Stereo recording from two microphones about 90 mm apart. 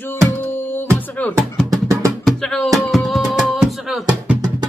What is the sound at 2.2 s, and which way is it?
Music, 10° left (ahead or behind).